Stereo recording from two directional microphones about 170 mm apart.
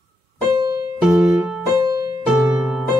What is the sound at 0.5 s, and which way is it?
Music, 25° right (ahead or behind).